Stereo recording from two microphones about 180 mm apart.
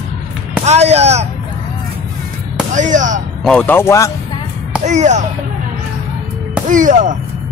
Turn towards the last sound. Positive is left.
turn(degrees=-45)  # may be behind; listen again after turning